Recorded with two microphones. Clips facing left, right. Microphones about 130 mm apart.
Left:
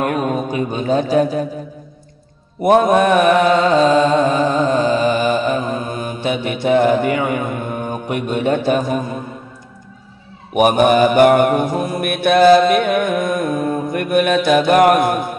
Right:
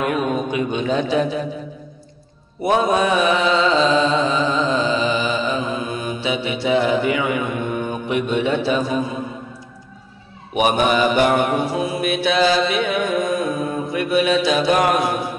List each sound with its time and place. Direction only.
0.0 s mantra: 45° left (ahead or behind)
2.6 s mantra: 55° left (ahead or behind)
10.5 s mantra: 50° left (ahead or behind)